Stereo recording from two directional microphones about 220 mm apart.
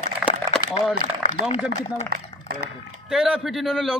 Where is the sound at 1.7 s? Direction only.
40° right (ahead or behind).